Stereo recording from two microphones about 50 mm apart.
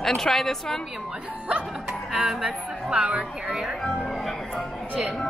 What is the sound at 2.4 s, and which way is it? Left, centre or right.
Speech, centre.